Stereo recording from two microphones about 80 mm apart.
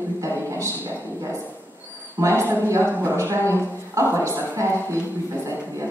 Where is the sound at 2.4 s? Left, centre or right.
Right.